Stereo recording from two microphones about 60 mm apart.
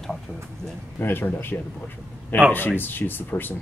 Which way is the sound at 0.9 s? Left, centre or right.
Left.